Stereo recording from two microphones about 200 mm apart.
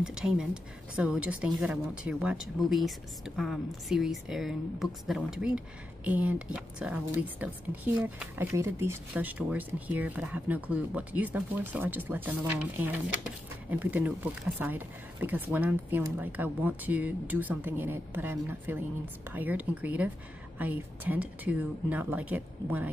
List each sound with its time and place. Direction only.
0.0 s speech: 5° right (ahead or behind)